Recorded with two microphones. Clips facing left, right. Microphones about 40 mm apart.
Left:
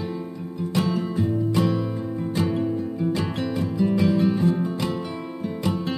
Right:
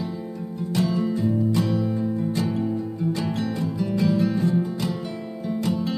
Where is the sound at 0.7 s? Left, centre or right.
Left.